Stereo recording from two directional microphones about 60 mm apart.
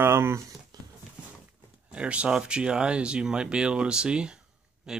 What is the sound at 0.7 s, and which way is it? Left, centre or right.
Horse, right.